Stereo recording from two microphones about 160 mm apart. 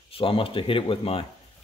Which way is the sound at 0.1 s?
35° left (ahead or behind).